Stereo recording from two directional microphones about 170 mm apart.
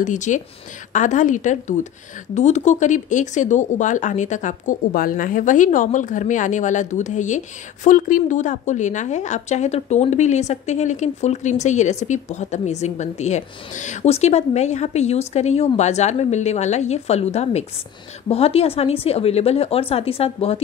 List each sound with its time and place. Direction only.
0.0 s speech: 45° left (ahead or behind)